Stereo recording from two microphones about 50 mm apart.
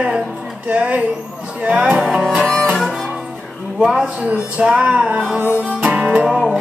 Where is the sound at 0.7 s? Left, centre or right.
Right.